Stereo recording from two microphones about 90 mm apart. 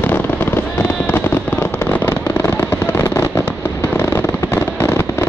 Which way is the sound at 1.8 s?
20° left (ahead or behind).